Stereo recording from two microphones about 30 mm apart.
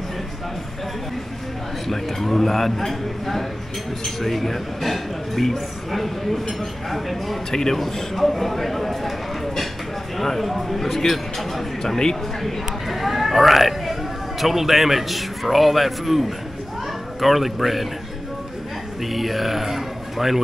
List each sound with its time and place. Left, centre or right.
1.9 s a man's voice: centre
11.8 s a man's voice: centre
12.4 s speech: centre
19.0 s speech: centre